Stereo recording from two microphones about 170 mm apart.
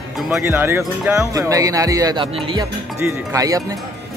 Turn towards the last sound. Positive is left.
turn(degrees=-20)  # may be behind; listen again after turning